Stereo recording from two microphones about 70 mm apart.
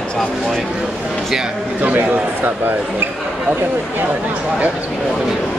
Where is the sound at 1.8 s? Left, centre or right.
Right.